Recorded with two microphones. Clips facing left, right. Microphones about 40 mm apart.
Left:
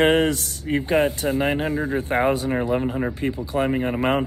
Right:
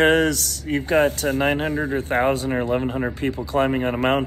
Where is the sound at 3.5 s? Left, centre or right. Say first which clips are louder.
Right 3 dB; right.